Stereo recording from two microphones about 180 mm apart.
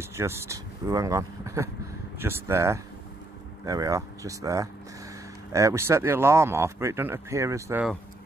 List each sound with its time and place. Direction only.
0.0 s speech: 15° right (ahead or behind)